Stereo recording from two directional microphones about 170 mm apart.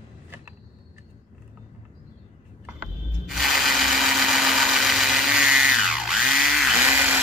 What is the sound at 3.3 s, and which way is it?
Sewing machine, centre (ahead or behind).